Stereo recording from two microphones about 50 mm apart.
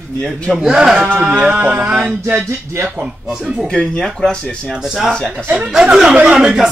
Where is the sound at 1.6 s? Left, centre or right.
Right.